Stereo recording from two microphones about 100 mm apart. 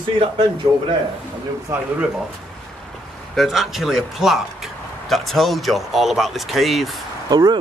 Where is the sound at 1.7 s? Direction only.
25° right (ahead or behind).